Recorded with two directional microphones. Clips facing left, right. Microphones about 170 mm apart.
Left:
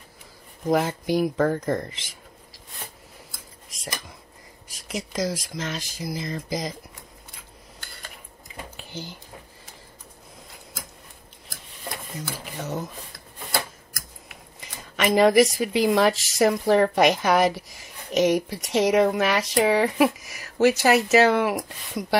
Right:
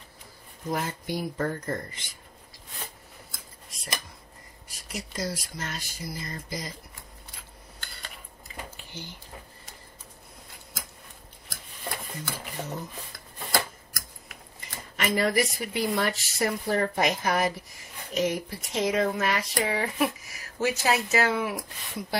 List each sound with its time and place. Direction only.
0.7 s speech: 90° left
4.6 s speech: 90° left
12.6 s speech: 90° left
15.0 s speech: 90° left